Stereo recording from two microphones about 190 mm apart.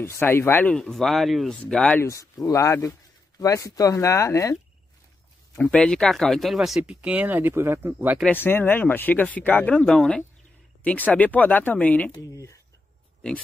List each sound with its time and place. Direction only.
0.0 s speech: 10° left (ahead or behind)
5.6 s speech: 5° left (ahead or behind)
8.3 s speech: 10° left (ahead or behind)